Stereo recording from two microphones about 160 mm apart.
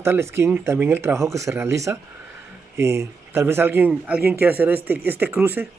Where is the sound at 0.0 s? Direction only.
15° right (ahead or behind).